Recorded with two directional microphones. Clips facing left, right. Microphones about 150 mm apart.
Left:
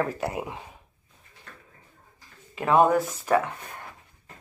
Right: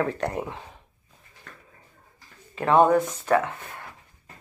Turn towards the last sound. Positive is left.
turn(degrees=10)  # may be behind; listen again after turning